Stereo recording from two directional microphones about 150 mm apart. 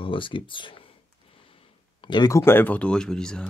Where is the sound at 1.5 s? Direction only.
35° left (ahead or behind); by 3.4 s 5° left (ahead or behind).